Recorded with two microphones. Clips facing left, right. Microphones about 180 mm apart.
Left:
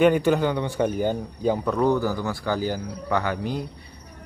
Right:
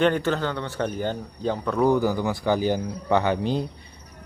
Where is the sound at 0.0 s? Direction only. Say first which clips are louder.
Left 4 dB; 10° left (ahead or behind).